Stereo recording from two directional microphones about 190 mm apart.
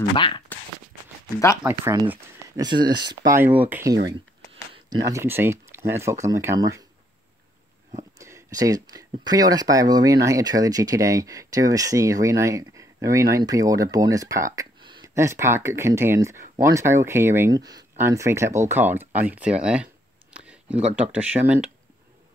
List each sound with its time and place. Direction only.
0.1 s speech: 25° left (ahead or behind)
1.6 s speech: 15° right (ahead or behind)
7.9 s speech: 15° right (ahead or behind)